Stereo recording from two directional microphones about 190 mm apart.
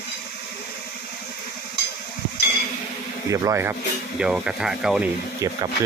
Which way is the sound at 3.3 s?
15° right (ahead or behind).